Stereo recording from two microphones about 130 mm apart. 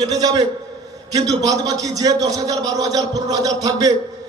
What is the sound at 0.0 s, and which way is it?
A man's voice, 30° right (ahead or behind).